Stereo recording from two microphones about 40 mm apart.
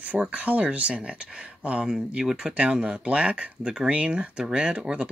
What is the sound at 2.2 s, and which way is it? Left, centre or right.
Speech, centre.